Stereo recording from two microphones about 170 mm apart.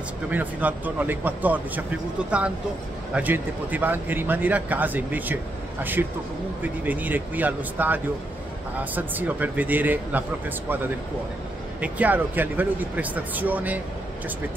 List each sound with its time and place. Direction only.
0.3 s speech: 10° right (ahead or behind)
11.8 s speech: 10° right (ahead or behind)